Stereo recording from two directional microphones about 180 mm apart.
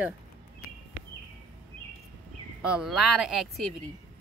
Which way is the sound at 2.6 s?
5° right (ahead or behind).